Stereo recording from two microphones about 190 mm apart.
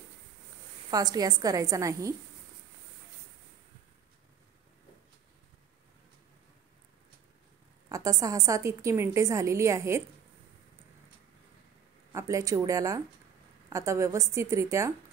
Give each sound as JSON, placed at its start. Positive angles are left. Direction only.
{"t": 0.8, "sound": "a woman's voice", "side_deg": -20}
{"t": 7.9, "sound": "a woman's voice", "side_deg": -15}
{"t": 12.1, "sound": "a woman's voice", "side_deg": -15}